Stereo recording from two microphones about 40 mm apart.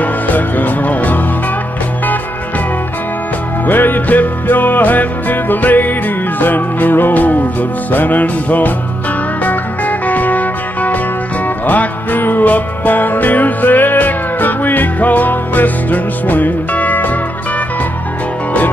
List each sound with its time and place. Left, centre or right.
0.0 s music: left
3.6 s music: left